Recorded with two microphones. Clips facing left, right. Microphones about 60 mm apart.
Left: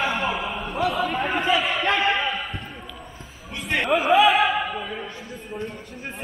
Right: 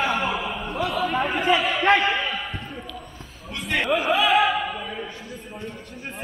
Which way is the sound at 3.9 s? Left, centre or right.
Centre.